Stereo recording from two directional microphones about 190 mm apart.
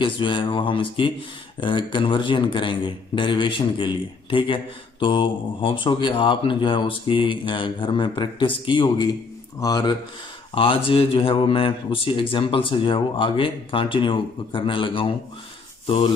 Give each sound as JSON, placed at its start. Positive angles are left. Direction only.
{"t": 0.0, "sound": "speech", "side_deg": 25}